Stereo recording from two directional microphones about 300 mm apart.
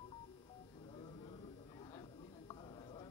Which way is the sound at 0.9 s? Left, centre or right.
Centre.